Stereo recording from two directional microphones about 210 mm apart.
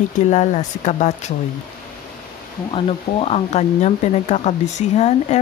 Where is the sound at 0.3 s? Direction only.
35° left (ahead or behind).